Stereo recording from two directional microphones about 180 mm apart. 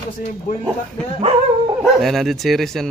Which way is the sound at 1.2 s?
30° right (ahead or behind).